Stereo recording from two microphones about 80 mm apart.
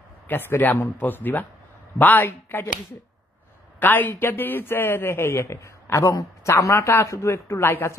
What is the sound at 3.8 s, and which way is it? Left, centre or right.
A man's voice, left.